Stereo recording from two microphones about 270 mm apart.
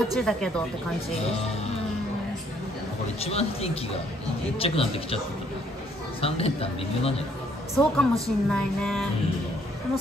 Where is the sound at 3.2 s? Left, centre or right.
Left.